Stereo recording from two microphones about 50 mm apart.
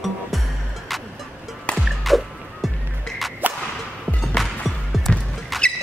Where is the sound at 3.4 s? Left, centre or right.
Right.